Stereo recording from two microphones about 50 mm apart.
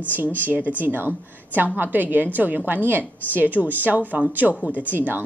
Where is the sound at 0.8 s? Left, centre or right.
Right.